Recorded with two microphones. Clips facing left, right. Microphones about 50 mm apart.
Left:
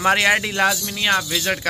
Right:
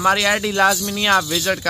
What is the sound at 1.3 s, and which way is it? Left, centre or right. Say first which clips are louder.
Speech: right 2 dB; left.